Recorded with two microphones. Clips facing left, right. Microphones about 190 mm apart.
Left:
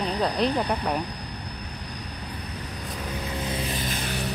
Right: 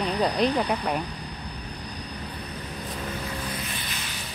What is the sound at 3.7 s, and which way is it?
Music, 45° left (ahead or behind).